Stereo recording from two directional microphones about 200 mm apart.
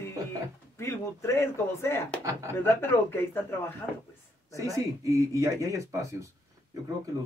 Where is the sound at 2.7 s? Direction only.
10° left (ahead or behind).